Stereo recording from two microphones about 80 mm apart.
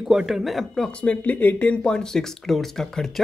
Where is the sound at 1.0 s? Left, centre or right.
Centre.